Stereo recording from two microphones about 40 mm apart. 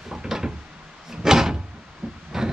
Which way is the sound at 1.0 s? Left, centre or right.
Centre.